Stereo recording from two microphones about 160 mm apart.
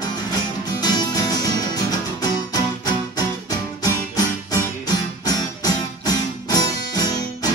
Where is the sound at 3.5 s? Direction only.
25° left (ahead or behind).